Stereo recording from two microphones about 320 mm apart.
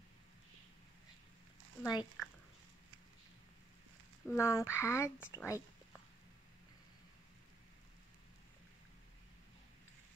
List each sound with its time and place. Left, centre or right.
1.8 s speech: centre
4.3 s speech: centre